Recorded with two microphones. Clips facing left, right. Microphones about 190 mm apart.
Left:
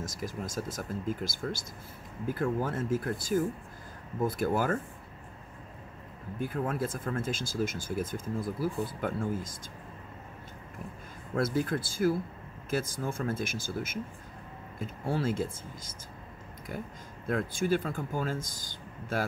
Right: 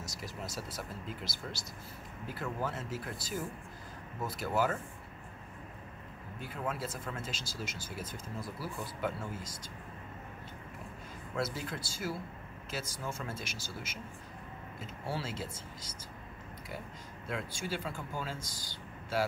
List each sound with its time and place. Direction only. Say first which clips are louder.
0.0 s speech: left 6 dB; 50° left (ahead or behind)
6.4 s speech: left 7 dB; 50° left (ahead or behind)
11.3 s speech: left 8 dB; 50° left (ahead or behind)
17.3 s speech: left 9 dB; 50° left (ahead or behind)